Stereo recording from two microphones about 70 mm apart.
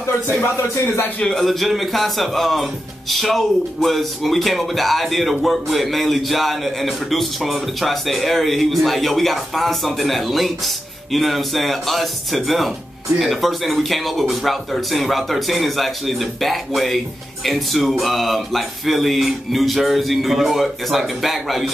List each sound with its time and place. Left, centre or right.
0.0 s speech: left
1.2 s speech: centre